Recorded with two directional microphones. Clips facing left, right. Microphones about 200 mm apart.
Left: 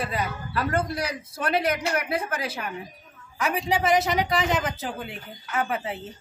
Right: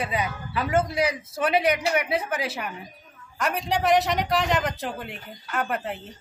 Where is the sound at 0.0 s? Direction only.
Centre (ahead or behind).